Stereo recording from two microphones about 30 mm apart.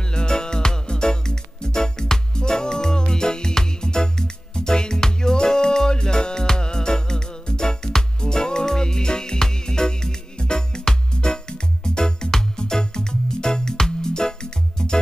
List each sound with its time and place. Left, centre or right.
0.1 s music: left